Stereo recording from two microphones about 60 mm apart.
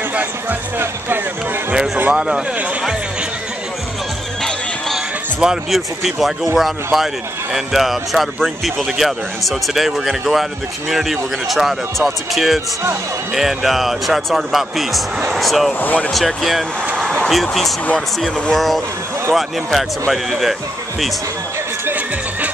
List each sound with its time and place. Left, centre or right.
0.1 s speech: right
2.1 s speech: centre
4.9 s speech: centre
15.8 s speech: left
16.1 s speech: centre